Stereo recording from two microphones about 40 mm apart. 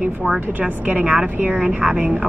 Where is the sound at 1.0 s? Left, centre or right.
Centre.